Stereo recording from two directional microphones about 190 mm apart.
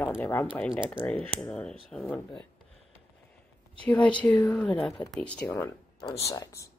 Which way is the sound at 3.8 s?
5° left (ahead or behind).